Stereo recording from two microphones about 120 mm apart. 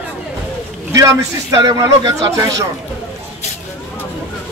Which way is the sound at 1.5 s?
30° right (ahead or behind).